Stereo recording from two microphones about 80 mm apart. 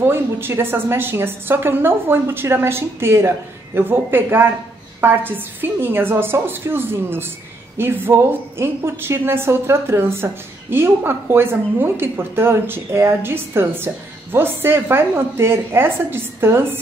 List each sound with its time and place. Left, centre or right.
0.0 s a woman's voice: right